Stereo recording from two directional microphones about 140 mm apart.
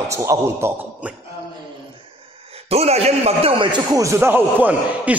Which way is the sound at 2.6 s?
50° right (ahead or behind).